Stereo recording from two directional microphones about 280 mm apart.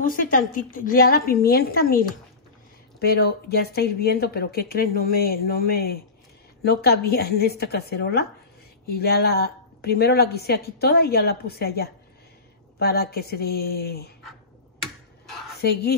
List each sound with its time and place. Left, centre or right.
0.0 s speech: left
15.6 s speech: left